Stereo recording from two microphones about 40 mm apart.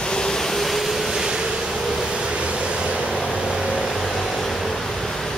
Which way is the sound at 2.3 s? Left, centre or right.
Right.